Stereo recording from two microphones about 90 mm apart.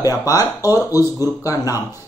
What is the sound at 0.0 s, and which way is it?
Speech, 40° left (ahead or behind).